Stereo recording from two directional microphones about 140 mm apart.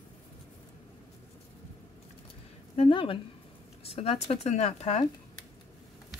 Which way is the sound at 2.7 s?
45° left (ahead or behind).